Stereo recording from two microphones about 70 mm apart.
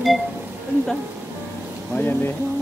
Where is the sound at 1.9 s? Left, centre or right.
Left.